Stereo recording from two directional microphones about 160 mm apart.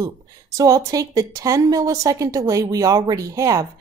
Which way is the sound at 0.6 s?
20° right (ahead or behind).